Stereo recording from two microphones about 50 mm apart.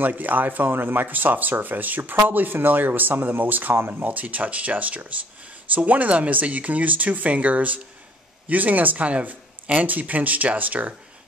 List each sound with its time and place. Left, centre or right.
0.0 s speech: right